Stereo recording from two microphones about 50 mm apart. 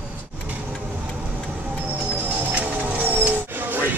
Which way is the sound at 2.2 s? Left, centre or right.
Right.